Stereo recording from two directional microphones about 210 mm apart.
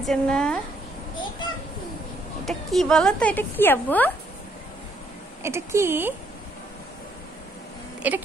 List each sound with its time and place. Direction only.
0.0 s speech: 5° left (ahead or behind)
2.4 s speech: centre (ahead or behind)
5.4 s speech: 10° right (ahead or behind)
8.0 s speech: 5° right (ahead or behind)